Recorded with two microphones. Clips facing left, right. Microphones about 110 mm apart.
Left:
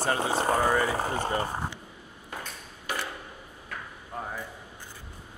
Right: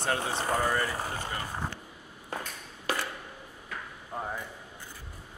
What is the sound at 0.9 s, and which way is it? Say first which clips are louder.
Speech: left 6 dB; 45° left (ahead or behind).